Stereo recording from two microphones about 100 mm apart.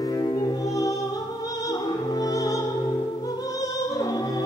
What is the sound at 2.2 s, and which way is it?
Opera, 35° left (ahead or behind).